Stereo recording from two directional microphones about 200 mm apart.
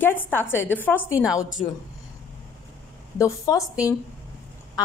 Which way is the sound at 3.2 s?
15° left (ahead or behind).